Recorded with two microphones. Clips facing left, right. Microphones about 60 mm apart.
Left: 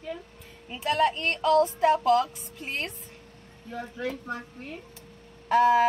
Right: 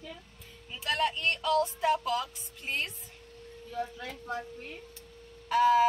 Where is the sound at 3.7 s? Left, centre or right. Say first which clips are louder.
Left 4 dB; left.